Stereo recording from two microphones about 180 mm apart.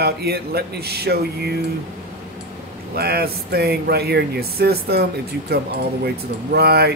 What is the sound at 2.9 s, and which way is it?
Speech, 60° right (ahead or behind).